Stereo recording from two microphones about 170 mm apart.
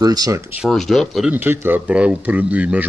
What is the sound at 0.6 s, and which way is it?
Speech, centre (ahead or behind).